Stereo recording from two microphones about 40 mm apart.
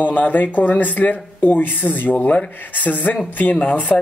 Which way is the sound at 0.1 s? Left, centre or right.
Left.